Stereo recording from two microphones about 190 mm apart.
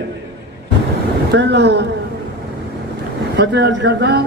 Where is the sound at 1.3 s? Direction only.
65° right (ahead or behind).